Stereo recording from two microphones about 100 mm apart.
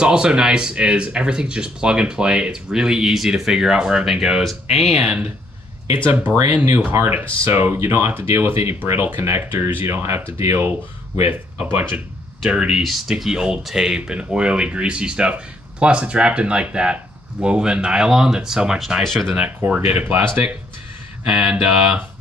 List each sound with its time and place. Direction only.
0.0 s speech: 10° right (ahead or behind)
6.0 s speech: 20° right (ahead or behind)
6.3 s speech: 30° right (ahead or behind)
12.4 s speech: 10° right (ahead or behind)
19.3 s speech: 15° right (ahead or behind)